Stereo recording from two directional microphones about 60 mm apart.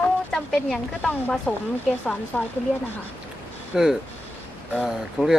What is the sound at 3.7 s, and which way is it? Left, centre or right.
Speech, centre.